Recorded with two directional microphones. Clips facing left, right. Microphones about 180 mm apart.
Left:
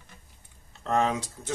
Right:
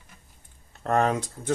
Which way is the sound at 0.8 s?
55° right (ahead or behind).